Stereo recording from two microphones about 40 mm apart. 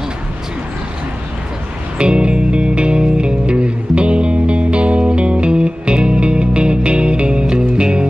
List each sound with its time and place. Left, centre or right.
2.0 s music: right